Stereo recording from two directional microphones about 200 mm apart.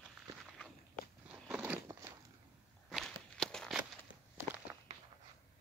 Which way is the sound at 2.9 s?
Centre (ahead or behind).